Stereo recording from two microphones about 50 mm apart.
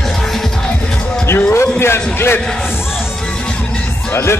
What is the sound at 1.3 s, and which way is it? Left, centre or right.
A man's voice, left.